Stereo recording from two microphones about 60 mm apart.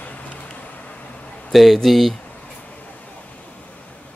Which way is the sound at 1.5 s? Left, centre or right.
Centre.